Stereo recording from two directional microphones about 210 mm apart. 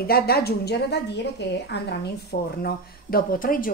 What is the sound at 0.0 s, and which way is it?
A woman's voice, 45° left (ahead or behind).